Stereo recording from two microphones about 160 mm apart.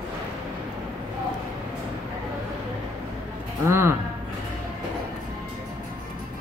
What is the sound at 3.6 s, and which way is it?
Speech, 15° right (ahead or behind).